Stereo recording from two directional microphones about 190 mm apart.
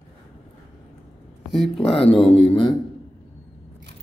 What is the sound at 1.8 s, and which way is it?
Speech, 30° left (ahead or behind).